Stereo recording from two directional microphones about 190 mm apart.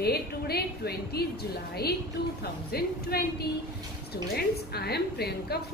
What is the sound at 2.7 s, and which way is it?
A woman's voice, 55° left (ahead or behind).